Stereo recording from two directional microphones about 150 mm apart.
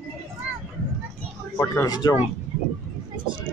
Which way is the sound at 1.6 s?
20° left (ahead or behind).